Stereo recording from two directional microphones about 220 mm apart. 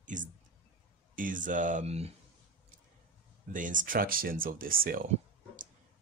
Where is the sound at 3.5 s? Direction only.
35° right (ahead or behind).